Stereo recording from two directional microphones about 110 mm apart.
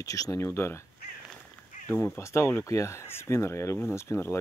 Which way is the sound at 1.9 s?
25° left (ahead or behind).